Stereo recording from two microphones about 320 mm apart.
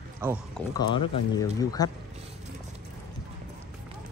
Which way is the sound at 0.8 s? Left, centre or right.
Centre.